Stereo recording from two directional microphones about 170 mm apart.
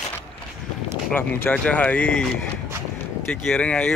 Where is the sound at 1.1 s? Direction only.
10° left (ahead or behind).